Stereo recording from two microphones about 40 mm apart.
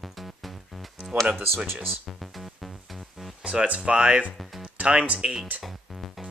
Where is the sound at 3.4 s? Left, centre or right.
Right.